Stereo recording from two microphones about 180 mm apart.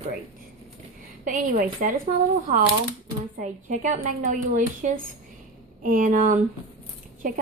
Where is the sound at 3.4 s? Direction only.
45° right (ahead or behind).